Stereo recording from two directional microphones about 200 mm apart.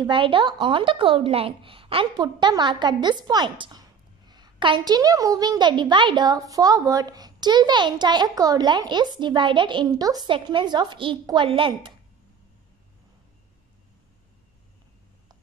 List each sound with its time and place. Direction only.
0.0 s a woman's voice: 25° right (ahead or behind)